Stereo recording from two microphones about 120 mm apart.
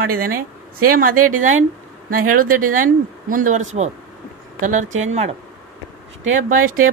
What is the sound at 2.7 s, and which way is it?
Speech, 90° right.